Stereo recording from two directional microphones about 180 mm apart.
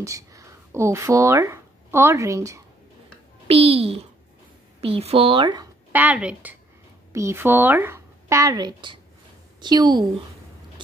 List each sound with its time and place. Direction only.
0.0 s speech: 20° right (ahead or behind)
3.4 s a woman's voice: 35° right (ahead or behind)
5.9 s a woman's voice: 10° right (ahead or behind)